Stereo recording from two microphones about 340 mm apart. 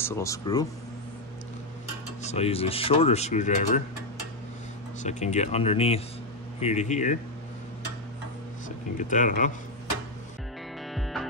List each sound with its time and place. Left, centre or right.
0.0 s speech: centre
2.2 s speech: centre
5.0 s speech: centre
8.6 s speech: left
10.9 s music: centre